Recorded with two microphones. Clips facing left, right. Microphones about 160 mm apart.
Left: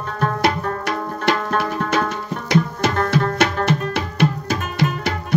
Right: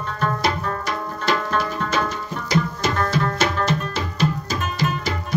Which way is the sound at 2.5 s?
65° left (ahead or behind).